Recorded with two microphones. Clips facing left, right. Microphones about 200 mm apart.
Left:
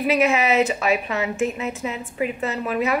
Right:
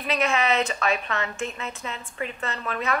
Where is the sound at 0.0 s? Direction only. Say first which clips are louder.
Left 5 dB; 5° left (ahead or behind).